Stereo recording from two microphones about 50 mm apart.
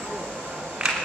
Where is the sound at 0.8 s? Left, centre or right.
Centre.